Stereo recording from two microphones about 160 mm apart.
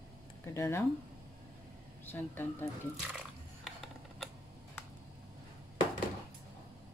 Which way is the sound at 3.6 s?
Centre (ahead or behind).